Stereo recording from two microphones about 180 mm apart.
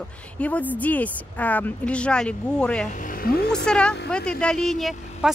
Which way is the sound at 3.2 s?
60° left (ahead or behind).